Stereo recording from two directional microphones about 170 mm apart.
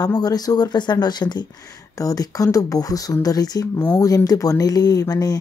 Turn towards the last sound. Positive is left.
turn(degrees=20)  # may be behind; listen again after turning